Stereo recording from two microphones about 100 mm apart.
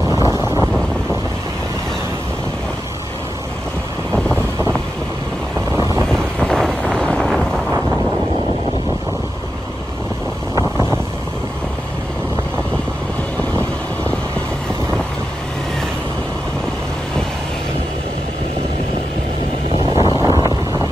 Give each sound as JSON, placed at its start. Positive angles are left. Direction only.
{"t": 0.1, "sound": "vehicle", "side_deg": -30}
{"t": 4.3, "sound": "vehicle", "side_deg": -25}
{"t": 6.0, "sound": "wind noise", "side_deg": 5}
{"t": 20.0, "sound": "wind noise", "side_deg": -35}